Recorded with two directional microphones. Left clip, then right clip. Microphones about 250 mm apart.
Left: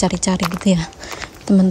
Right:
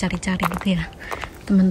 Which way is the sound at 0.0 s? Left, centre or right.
Centre.